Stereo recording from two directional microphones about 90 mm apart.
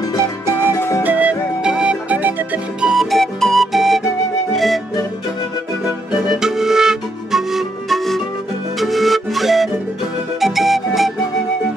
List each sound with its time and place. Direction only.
0.2 s music: 30° right (ahead or behind)
0.7 s music: 30° left (ahead or behind)
1.0 s music: 10° right (ahead or behind)
2.8 s music: 5° right (ahead or behind)
6.2 s music: 5° right (ahead or behind)